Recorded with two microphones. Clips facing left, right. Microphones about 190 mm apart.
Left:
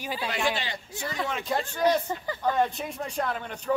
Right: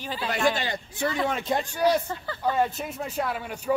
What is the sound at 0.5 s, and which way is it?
Speech, 45° right (ahead or behind).